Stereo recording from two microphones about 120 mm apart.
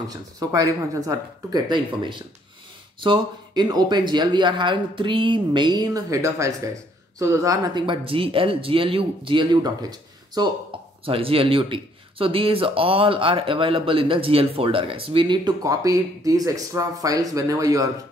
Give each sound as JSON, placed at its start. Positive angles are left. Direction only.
{"t": 0.1, "sound": "speech", "side_deg": -30}
{"t": 3.0, "sound": "speech", "side_deg": -40}
{"t": 7.8, "sound": "a man's voice", "side_deg": -45}
{"t": 10.7, "sound": "a sound", "side_deg": -45}
{"t": 11.1, "sound": "a man's voice", "side_deg": -50}